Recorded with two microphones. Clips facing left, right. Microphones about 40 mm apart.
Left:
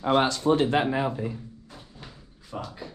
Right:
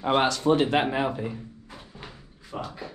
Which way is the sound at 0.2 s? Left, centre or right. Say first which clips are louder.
Even; right.